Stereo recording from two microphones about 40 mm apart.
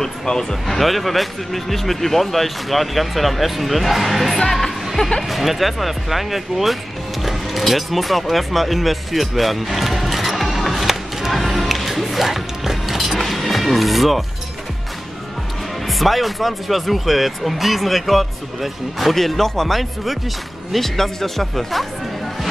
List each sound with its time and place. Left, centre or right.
0.0 s speech: centre
4.4 s music: centre
5.0 s speech: left
5.3 s music: centre
15.9 s speech: centre